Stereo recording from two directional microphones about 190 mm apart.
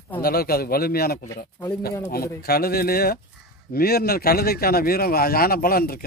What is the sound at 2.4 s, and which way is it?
A man's voice, 55° left (ahead or behind).